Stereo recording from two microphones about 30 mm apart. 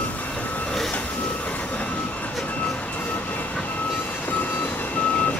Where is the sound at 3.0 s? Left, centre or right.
Left.